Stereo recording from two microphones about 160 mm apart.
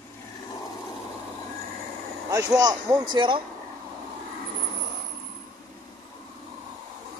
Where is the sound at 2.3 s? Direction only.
20° right (ahead or behind).